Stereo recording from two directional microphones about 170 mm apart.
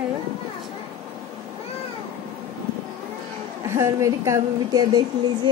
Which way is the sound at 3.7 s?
15° right (ahead or behind).